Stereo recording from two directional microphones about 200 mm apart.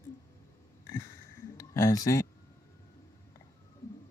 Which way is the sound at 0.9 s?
15° left (ahead or behind).